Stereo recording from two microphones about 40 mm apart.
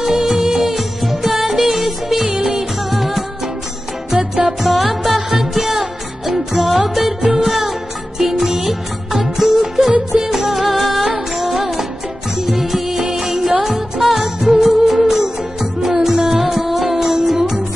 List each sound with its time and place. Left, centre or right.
0.1 s music of bollywood: centre
2.2 s music: centre
2.9 s music: centre
4.5 s music: centre